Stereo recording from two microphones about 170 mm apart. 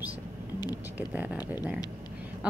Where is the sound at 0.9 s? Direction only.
10° right (ahead or behind).